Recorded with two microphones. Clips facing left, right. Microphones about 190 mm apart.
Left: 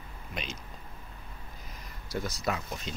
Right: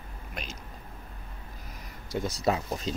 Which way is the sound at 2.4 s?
30° right (ahead or behind).